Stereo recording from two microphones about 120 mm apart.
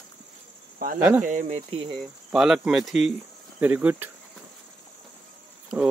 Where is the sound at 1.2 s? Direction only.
75° right (ahead or behind).